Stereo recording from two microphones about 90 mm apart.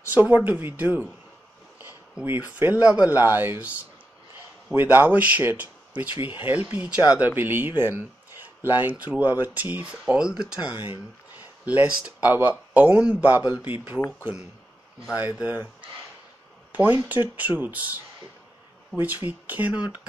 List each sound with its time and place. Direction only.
0.1 s speech: 15° right (ahead or behind)
2.2 s speech: 20° right (ahead or behind)
11.3 s a sound: 20° right (ahead or behind)
11.9 s speech: 10° right (ahead or behind)
12.3 s speech: 20° right (ahead or behind)
15.3 s speech: 15° right (ahead or behind)
16.7 s speech: 20° right (ahead or behind)